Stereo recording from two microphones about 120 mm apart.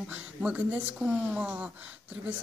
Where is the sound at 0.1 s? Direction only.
10° right (ahead or behind).